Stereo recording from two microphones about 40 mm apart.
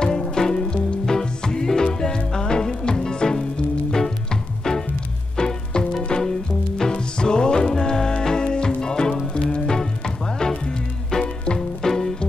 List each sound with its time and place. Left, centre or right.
0.0 s music: centre